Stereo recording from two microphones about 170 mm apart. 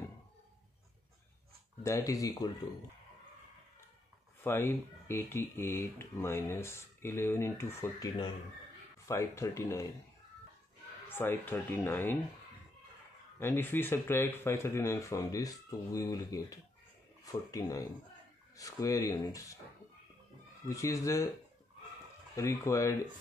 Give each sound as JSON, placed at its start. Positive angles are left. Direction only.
{"t": 1.8, "sound": "speech", "side_deg": 15}
{"t": 4.4, "sound": "speech", "side_deg": 15}
{"t": 11.1, "sound": "speech", "side_deg": 10}
{"t": 13.4, "sound": "speech", "side_deg": 10}
{"t": 20.6, "sound": "speech", "side_deg": 20}
{"t": 22.3, "sound": "speech", "side_deg": 15}